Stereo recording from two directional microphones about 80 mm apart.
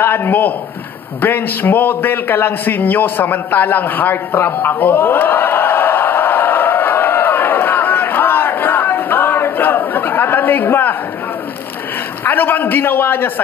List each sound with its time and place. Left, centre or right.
0.0 s a man's voice: left
1.2 s a sound: left
12.3 s a man's voice: left